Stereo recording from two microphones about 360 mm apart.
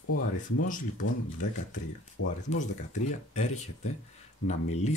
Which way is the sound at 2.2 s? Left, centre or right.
Centre.